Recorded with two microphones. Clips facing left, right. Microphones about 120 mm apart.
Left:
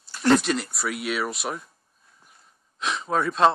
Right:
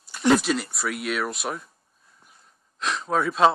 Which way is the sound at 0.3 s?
Centre (ahead or behind).